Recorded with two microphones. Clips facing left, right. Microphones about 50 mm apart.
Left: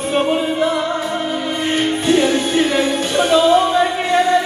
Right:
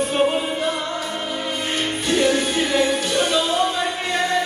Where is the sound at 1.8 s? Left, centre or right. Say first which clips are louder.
Left 5 dB; centre.